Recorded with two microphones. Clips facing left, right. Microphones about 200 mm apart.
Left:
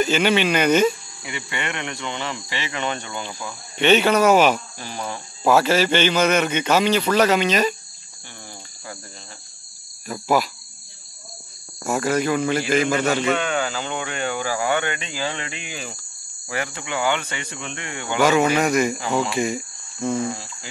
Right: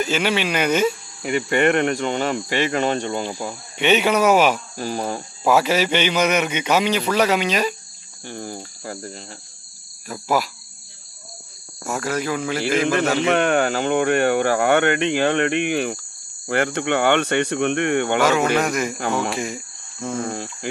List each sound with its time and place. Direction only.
0.0 s speech: centre (ahead or behind)
1.2 s speech: 50° right (ahead or behind)
3.7 s a man's voice: 10° right (ahead or behind)
4.7 s cricket: 40° right (ahead or behind)
5.4 s a man's voice: 10° right (ahead or behind)
8.3 s cricket: 45° right (ahead or behind)
10.0 s speech: centre (ahead or behind)
11.9 s speech: centre (ahead or behind)
13.2 s speech: 60° right (ahead or behind)
18.2 s speech: centre (ahead or behind)
18.9 s speech: 60° right (ahead or behind)
19.3 s speech: centre (ahead or behind)